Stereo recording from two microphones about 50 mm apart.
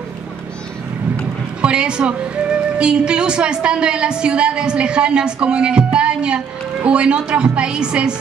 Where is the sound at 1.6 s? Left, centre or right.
Centre.